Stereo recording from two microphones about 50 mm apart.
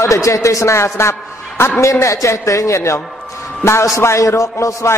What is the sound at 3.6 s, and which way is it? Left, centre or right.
A man's voice, left.